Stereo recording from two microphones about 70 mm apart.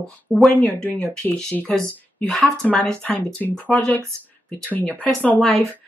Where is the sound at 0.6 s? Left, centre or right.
Centre.